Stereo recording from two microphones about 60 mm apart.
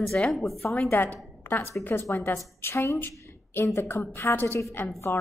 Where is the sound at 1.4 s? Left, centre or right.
Left.